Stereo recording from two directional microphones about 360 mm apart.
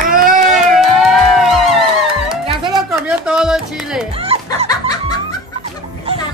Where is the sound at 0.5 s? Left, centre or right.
Centre.